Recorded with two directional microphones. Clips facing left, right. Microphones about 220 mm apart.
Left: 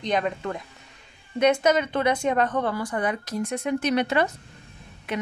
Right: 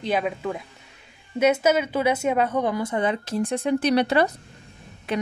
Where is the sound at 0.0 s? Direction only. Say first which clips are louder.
Right 1 dB; 5° right (ahead or behind).